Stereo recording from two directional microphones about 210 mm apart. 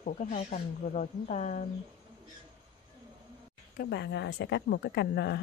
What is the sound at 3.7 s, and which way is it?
A woman's voice, 50° left (ahead or behind).